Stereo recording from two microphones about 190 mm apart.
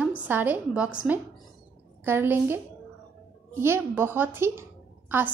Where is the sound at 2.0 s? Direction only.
10° right (ahead or behind).